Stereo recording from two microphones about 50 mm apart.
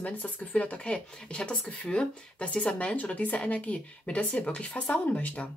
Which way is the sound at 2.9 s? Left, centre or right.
Left.